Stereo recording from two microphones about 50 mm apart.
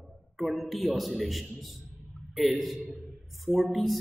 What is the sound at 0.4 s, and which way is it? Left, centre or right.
A man's voice, centre.